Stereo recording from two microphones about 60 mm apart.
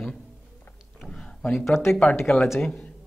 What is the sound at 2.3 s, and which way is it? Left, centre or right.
Speech, left.